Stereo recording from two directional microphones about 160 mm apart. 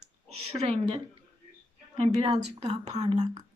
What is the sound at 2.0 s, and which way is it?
Speech, 40° right (ahead or behind).